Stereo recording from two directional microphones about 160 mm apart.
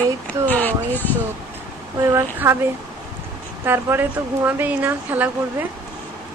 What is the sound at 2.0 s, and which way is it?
Speech, 15° right (ahead or behind).